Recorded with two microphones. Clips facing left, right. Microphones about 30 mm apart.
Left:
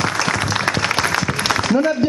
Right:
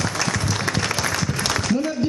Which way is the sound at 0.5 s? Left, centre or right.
Left.